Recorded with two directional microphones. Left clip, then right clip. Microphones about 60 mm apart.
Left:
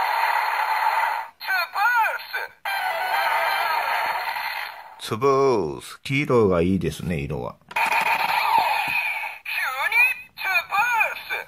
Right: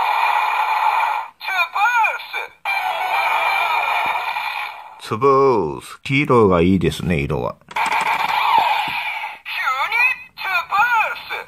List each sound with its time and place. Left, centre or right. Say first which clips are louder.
0.0 s a sound: right 4 dB; centre
1.7 s music: right 4 dB; centre
5.1 s speech: right 5 dB; centre
6.0 s speech: right 5 dB; right
6.8 s speech: right 7 dB; right
7.7 s a sound: right 2 dB; centre